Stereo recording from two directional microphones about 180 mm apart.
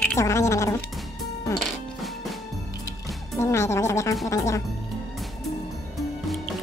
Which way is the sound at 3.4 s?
15° left (ahead or behind).